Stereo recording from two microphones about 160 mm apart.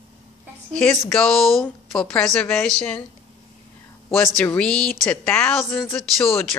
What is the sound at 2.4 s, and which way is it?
Speech, 10° left (ahead or behind).